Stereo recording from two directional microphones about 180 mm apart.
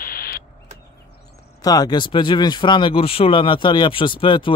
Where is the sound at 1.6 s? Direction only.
20° left (ahead or behind).